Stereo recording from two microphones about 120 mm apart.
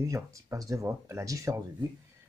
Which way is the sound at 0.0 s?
25° right (ahead or behind).